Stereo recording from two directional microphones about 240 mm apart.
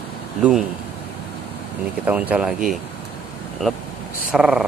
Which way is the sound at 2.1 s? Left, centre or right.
Centre.